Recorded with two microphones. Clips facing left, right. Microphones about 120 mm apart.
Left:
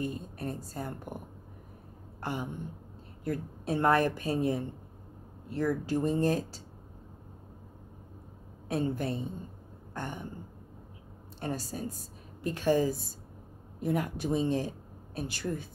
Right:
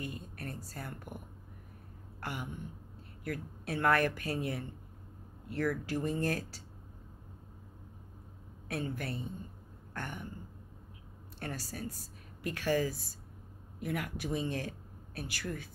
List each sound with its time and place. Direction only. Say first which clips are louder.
0.0 s a woman's voice: left 7 dB; 25° left (ahead or behind)
2.1 s a sound: left 5 dB; 25° left (ahead or behind)
3.3 s a woman's voice: left 6 dB; 25° left (ahead or behind)
8.6 s a woman's voice: left 7 dB; 25° left (ahead or behind)
11.3 s a woman's voice: left 6 dB; 20° left (ahead or behind)